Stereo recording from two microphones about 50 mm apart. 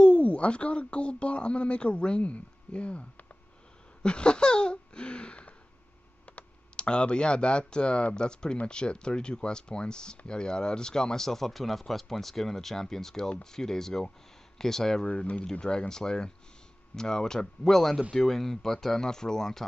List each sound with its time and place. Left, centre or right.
0.0 s speech: left
15.0 s speech: left
15.6 s speech: centre